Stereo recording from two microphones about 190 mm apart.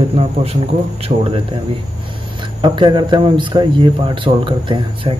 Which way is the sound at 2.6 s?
25° right (ahead or behind).